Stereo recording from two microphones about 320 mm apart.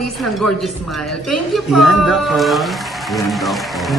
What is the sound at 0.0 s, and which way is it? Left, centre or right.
Speech, centre.